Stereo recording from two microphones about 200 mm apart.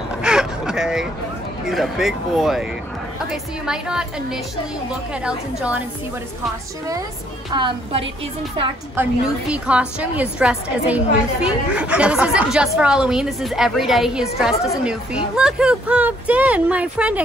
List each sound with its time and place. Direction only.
0.2 s a sound: 5° right (ahead or behind)
1.7 s speech: centre (ahead or behind)
7.5 s a woman's voice: 25° right (ahead or behind)
9.0 s speech: 10° right (ahead or behind)